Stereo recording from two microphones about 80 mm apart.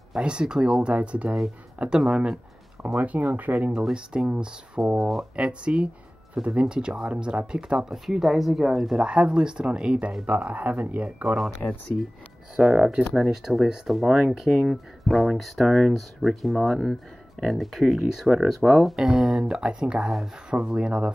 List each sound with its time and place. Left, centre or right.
0.1 s speech: centre
3.0 s speech: right; by 5.2 s centre
5.3 s speech: centre
7.9 s speech: centre
11.3 s speech: centre